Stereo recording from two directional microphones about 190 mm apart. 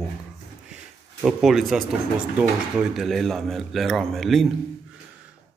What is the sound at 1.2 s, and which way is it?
Speech, centre (ahead or behind).